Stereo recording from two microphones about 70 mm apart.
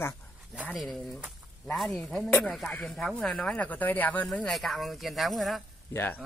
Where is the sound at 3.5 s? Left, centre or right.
Left.